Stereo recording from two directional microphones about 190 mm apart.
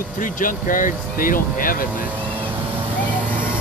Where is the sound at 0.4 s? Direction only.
45° left (ahead or behind).